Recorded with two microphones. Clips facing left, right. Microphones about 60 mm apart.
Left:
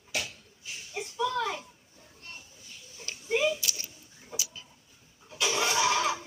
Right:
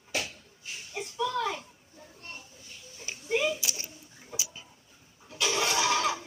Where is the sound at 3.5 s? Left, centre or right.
Right.